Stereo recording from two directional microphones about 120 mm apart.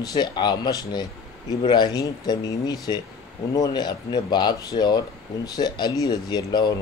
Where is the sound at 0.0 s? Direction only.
35° left (ahead or behind).